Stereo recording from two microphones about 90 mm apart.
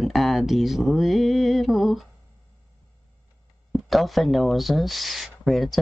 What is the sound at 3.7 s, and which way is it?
Speech, centre (ahead or behind).